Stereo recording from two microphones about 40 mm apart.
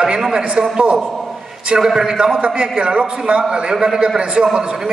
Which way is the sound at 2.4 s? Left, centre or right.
Right.